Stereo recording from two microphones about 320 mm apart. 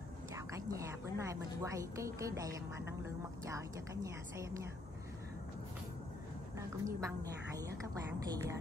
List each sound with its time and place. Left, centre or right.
0.5 s a woman's voice: centre
6.8 s a woman's voice: centre